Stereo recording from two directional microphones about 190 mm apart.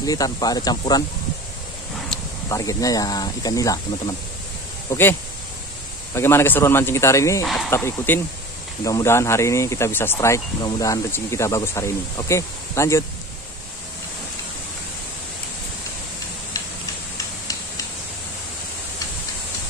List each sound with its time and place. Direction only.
0.0 s speech: 20° left (ahead or behind)
2.5 s speech: 20° left (ahead or behind)
6.1 s speech: 15° left (ahead or behind)
7.4 s speech: centre (ahead or behind)
7.7 s speech: 15° left (ahead or behind)